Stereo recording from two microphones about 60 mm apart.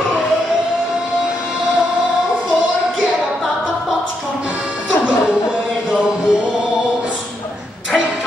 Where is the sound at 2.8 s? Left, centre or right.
Centre.